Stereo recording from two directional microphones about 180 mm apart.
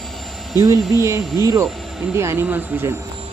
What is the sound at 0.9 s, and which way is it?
Speech, 15° right (ahead or behind).